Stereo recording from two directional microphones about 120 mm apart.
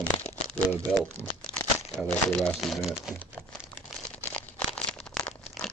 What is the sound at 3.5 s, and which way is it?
Crumpling, centre (ahead or behind).